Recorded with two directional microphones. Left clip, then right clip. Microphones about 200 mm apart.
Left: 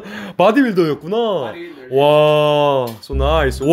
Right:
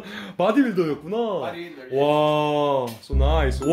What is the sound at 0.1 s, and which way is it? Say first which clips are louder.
Speech: left 8 dB; 30° left (ahead or behind).